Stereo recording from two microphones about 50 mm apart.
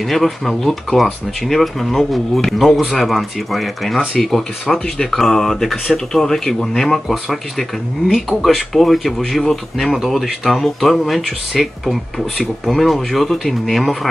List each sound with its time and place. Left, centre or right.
0.0 s speech: centre